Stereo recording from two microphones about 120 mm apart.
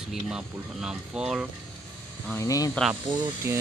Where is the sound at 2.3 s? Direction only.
30° left (ahead or behind).